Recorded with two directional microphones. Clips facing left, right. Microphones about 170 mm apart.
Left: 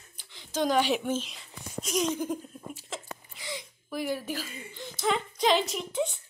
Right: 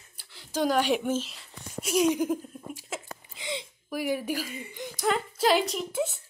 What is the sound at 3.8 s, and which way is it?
A woman's voice, 10° right (ahead or behind).